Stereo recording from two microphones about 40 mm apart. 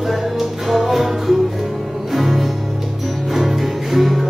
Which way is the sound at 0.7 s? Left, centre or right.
Centre.